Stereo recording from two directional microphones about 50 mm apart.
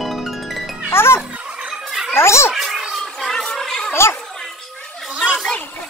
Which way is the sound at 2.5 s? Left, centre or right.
Centre.